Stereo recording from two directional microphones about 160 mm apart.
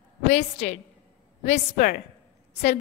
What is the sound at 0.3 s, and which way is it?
A woman's voice, 45° left (ahead or behind).